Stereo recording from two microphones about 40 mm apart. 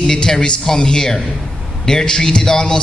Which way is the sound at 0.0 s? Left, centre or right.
Centre.